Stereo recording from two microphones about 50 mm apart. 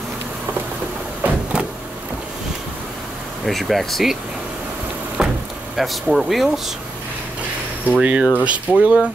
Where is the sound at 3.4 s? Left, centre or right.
Centre.